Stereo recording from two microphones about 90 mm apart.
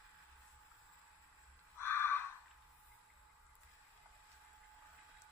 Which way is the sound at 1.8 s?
25° left (ahead or behind).